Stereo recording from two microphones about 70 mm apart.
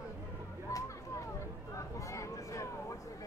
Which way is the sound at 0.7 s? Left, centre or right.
Left.